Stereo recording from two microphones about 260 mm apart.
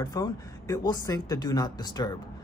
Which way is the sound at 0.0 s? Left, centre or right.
Centre.